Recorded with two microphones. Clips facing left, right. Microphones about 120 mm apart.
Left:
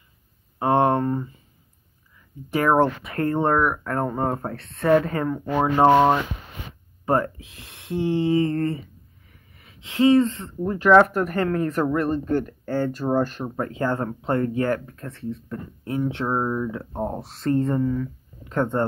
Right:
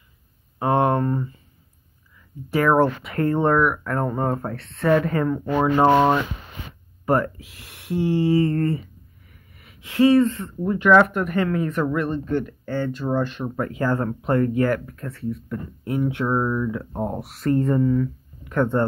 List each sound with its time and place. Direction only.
0.6 s a sound: 25° left (ahead or behind)
2.5 s speech: 20° left (ahead or behind)
5.3 s speech: 5° left (ahead or behind)
5.6 s speech: 20° left (ahead or behind)
9.3 s a sound: 25° left (ahead or behind)
10.6 s speech: 35° left (ahead or behind); by 18.9 s 20° left (ahead or behind)